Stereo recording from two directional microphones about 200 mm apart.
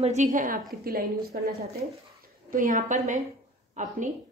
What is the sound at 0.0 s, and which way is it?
A woman's voice, 35° right (ahead or behind).